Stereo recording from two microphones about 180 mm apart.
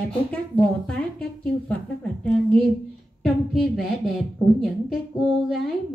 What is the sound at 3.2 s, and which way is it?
Speech, centre (ahead or behind).